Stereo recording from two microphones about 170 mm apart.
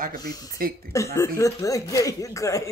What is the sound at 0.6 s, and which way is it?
Speech, 60° right (ahead or behind).